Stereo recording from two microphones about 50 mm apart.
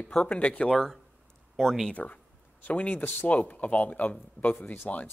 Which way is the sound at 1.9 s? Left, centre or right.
Left.